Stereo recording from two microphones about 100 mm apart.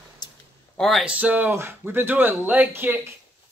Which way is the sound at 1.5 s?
25° right (ahead or behind).